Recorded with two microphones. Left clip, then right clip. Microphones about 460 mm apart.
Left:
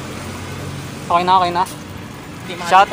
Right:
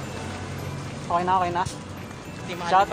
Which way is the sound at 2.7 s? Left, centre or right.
Right.